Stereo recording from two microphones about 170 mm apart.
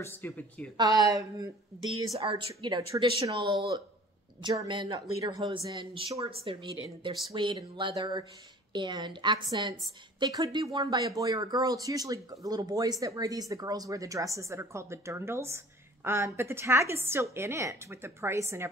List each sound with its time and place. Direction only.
0.0 s speech: 10° left (ahead or behind)
0.7 s speech: 25° right (ahead or behind)
2.1 s speech: 35° right (ahead or behind); by 18.7 s 15° right (ahead or behind)